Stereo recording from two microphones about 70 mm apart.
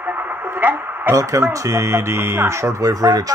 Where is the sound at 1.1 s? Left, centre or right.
Right.